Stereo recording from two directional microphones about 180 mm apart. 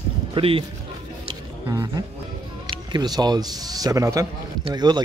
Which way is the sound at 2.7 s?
25° right (ahead or behind).